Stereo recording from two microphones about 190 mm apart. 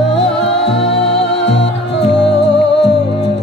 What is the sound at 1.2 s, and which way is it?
Music, 65° left (ahead or behind).